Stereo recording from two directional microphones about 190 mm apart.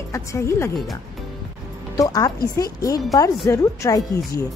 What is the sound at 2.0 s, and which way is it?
A woman's voice, 20° left (ahead or behind).